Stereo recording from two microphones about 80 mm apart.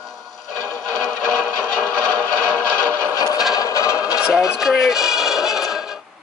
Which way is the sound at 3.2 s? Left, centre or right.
Left.